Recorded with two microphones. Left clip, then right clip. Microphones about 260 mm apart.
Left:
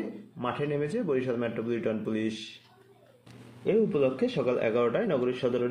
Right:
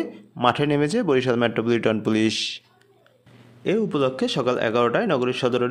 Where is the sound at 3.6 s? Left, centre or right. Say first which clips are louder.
Right 3 dB; right.